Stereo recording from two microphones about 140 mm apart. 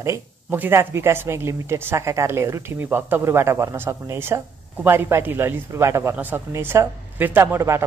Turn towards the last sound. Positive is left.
turn(degrees=-20)  # may be behind; listen again after turning